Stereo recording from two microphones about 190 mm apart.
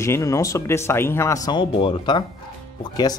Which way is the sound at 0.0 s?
15° left (ahead or behind).